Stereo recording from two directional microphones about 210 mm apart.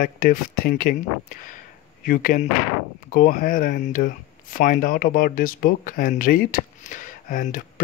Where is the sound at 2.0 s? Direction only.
40° left (ahead or behind).